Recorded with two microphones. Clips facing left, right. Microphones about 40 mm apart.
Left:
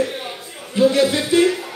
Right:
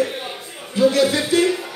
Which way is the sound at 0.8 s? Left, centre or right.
Left.